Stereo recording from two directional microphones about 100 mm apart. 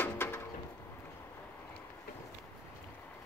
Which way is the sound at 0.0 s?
20° left (ahead or behind).